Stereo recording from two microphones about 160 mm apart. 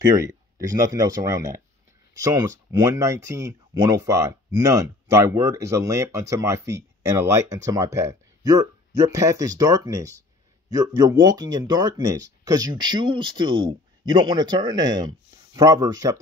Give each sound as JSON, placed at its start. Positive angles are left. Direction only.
{"t": 0.2, "sound": "speech", "side_deg": -20}